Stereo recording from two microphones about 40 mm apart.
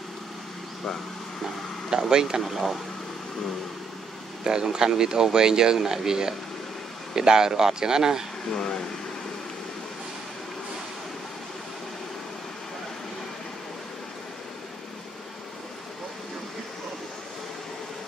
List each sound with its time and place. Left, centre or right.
1.9 s speech: centre
4.5 s speech: centre
8.5 s speech: centre